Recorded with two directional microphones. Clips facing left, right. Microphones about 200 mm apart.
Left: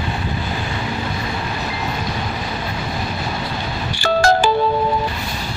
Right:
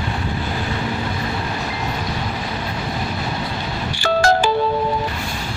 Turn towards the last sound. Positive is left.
turn(degrees=40)  # may be behind; listen again after turning